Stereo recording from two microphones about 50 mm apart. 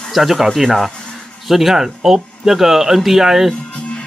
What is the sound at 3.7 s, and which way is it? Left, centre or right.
Music, left.